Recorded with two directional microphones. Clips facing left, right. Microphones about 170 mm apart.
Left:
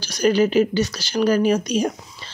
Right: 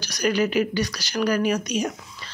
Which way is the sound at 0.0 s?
30° left (ahead or behind).